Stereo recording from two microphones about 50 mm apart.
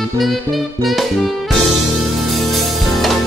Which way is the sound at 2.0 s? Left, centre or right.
Centre.